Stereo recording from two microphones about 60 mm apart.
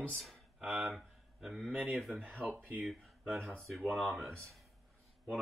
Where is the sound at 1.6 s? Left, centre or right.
Right.